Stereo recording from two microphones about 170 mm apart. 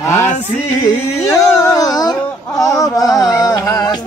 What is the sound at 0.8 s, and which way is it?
Speech, 20° left (ahead or behind).